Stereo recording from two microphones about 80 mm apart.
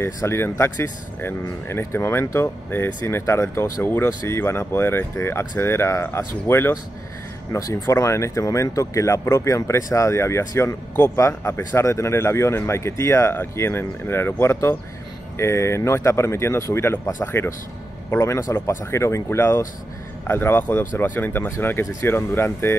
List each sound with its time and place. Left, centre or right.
0.0 s speech: left
7.5 s speech: left
7.9 s speech: left